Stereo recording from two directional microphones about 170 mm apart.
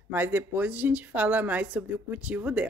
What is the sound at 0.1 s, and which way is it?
A woman's voice, 10° right (ahead or behind).